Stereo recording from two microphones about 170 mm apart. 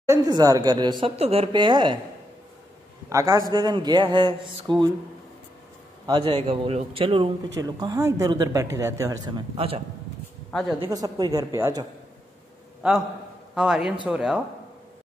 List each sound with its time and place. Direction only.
0.1 s a man's voice: 20° right (ahead or behind)
3.1 s a man's voice: 20° right (ahead or behind)
6.0 s a man's voice: 30° right (ahead or behind)
10.9 s a man's voice: 20° right (ahead or behind)
12.8 s a man's voice: 10° right (ahead or behind)